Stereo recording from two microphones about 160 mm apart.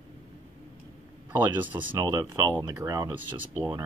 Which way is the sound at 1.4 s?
10° right (ahead or behind).